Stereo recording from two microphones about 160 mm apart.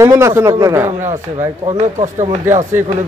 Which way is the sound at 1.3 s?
40° right (ahead or behind).